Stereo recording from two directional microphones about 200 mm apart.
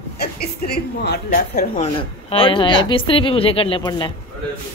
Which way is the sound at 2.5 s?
25° left (ahead or behind).